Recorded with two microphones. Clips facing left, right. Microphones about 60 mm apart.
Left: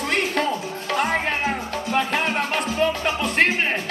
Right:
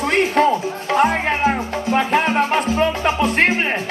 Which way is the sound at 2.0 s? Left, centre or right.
Right.